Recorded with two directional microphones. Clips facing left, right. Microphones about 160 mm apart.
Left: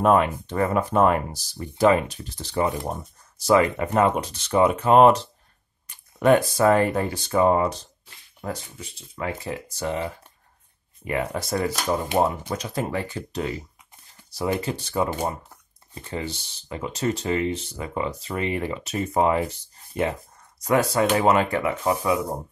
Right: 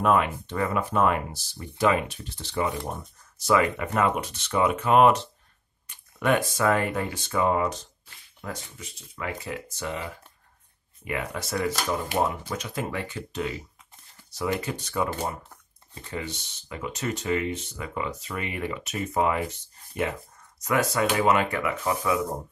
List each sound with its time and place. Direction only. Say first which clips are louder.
0.0 s speech: left 4 dB; 35° left (ahead or behind)
15.0 s speech: left 3 dB; 15° left (ahead or behind)
16.1 s speech: left 3 dB; 30° left (ahead or behind)
21.8 s speech: left 1 dB; 15° left (ahead or behind)